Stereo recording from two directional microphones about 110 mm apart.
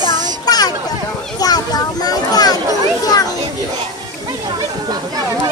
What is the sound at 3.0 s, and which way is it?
Children playing, 35° left (ahead or behind).